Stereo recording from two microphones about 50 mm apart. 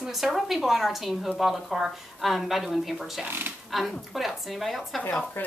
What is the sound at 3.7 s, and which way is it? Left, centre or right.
A woman's voice, centre.